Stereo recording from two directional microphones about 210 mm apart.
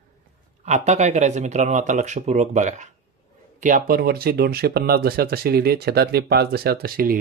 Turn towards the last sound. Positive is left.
turn(degrees=-45)  # may be behind; listen again after turning